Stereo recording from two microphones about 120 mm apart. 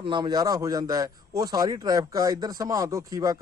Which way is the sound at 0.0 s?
40° right (ahead or behind).